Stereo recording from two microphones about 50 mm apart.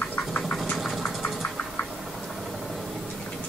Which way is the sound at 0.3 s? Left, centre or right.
Centre.